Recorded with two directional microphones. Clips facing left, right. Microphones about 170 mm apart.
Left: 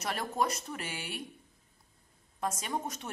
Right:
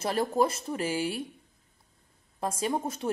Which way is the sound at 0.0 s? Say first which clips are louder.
Right 7 dB; 30° right (ahead or behind).